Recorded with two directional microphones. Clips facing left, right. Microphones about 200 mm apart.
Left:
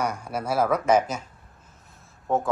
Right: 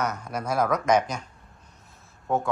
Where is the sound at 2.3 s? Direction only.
Centre (ahead or behind).